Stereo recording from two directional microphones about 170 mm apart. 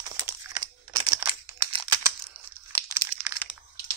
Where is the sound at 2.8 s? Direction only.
15° right (ahead or behind).